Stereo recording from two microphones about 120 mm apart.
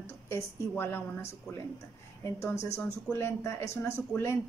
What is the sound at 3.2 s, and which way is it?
A woman's voice, 20° left (ahead or behind).